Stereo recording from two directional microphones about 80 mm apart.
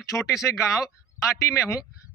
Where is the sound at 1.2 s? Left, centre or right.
Left.